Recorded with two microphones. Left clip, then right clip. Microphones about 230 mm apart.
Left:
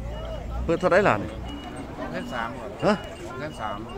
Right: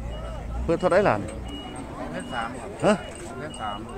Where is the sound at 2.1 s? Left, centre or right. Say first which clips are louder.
Even; left.